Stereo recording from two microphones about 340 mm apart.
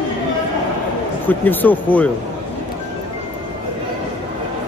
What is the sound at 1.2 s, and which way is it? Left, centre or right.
Speech, centre.